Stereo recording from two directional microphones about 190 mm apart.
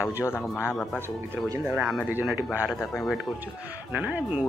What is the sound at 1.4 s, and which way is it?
Speech, 15° right (ahead or behind).